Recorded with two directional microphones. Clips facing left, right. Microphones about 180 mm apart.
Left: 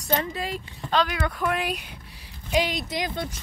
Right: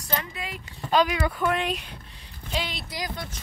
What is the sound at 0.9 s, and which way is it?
Speech, 10° right (ahead or behind).